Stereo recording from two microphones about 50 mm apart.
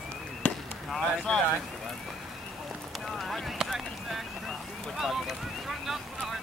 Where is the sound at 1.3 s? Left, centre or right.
Centre.